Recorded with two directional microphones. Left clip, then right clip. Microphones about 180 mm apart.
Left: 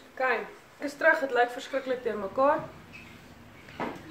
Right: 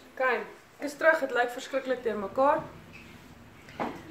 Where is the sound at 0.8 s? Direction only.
25° right (ahead or behind).